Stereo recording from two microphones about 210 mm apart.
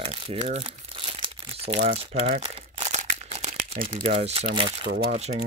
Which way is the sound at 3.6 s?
30° right (ahead or behind).